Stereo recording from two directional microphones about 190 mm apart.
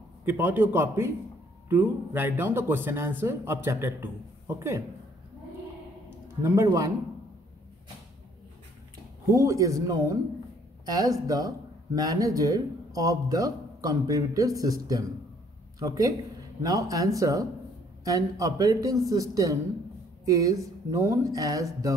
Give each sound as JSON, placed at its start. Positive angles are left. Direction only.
{"t": 0.2, "sound": "speech", "side_deg": -10}
{"t": 6.4, "sound": "speech", "side_deg": -15}
{"t": 9.2, "sound": "speech", "side_deg": -15}